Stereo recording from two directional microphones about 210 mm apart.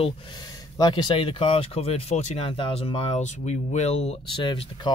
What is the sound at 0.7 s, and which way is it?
Speech, 20° left (ahead or behind).